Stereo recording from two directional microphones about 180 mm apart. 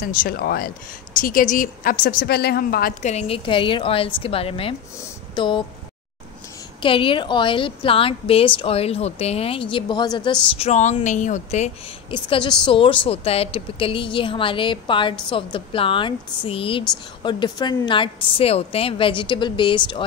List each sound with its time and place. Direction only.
0.0 s a woman's voice: 55° left (ahead or behind)
3.0 s a woman's voice: 40° left (ahead or behind)
6.8 s a woman's voice: 30° left (ahead or behind)
10.6 s a woman's voice: 40° left (ahead or behind)
12.1 s a woman's voice: 30° left (ahead or behind)